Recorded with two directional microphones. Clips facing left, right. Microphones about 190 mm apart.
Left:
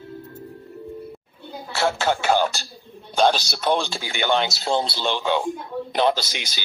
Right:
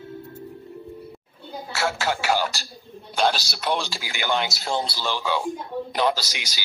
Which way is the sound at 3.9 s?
25° left (ahead or behind).